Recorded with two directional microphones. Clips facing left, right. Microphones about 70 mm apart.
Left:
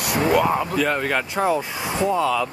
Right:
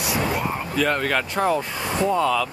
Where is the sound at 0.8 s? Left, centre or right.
Centre.